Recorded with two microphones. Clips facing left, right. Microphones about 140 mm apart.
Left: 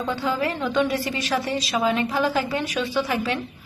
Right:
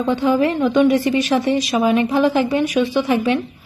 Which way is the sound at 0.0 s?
15° right (ahead or behind).